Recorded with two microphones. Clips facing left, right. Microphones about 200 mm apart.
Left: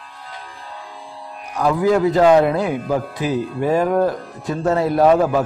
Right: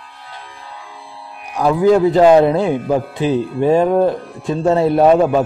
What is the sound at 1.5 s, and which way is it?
A man's voice, 30° right (ahead or behind).